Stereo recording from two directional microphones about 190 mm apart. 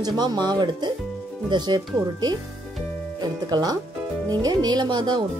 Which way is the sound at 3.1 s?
20° right (ahead or behind).